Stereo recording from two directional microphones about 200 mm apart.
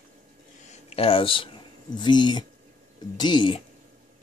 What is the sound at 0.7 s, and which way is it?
Speech, 30° left (ahead or behind).